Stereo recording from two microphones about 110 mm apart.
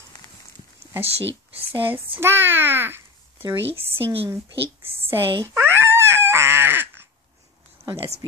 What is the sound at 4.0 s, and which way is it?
Speech, 55° right (ahead or behind).